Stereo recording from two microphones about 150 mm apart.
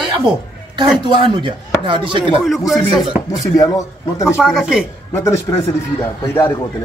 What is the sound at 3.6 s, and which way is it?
Speech, 20° left (ahead or behind).